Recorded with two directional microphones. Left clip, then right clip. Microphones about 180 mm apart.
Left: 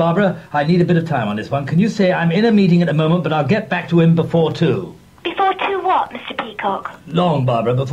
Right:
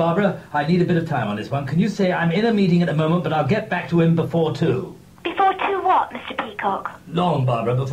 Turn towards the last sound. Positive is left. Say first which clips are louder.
# left 5 dB
turn(degrees=30)  # may be behind; listen again after turning